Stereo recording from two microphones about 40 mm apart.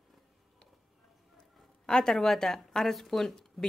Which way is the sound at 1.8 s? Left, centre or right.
Centre.